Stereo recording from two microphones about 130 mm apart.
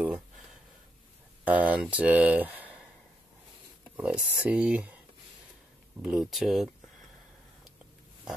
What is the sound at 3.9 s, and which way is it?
Speech, 10° right (ahead or behind).